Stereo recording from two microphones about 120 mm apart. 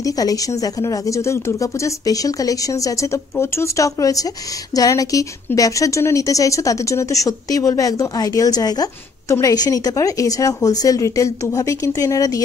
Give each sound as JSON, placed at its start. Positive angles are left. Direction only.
{"t": 0.0, "sound": "a woman's voice", "side_deg": 30}